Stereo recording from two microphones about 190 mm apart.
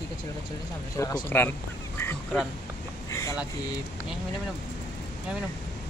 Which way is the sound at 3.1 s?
15° left (ahead or behind).